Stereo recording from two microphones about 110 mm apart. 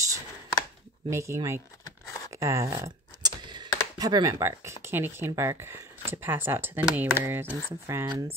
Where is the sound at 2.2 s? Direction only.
30° right (ahead or behind).